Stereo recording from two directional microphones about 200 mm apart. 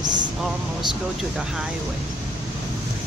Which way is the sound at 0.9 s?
5° right (ahead or behind).